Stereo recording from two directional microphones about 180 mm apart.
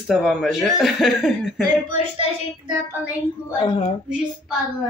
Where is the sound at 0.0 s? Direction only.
Centre (ahead or behind).